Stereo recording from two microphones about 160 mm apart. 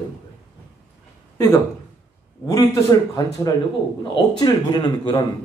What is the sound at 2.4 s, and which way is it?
Speech, 20° left (ahead or behind).